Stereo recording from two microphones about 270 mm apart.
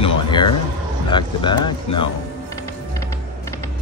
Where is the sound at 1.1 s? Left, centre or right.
Centre.